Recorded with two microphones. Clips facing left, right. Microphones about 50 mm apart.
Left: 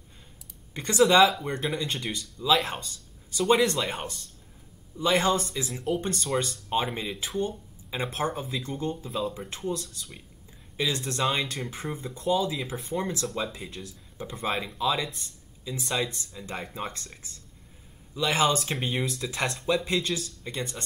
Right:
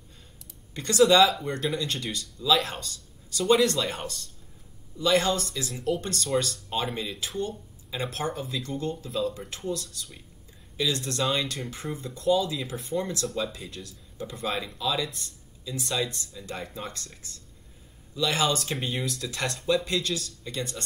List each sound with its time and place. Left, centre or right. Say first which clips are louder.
0.7 s speech: even; left
11.1 s speech: even; left
18.1 s speech: left 1 dB; left